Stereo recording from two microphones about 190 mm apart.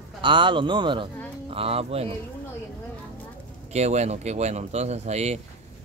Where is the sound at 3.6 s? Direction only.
35° right (ahead or behind).